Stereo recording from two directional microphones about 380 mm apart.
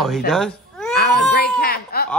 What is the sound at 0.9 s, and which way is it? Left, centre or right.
Baby cry, left.